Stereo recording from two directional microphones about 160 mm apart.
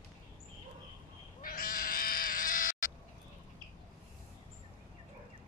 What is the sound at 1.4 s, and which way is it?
Cat, 65° left (ahead or behind).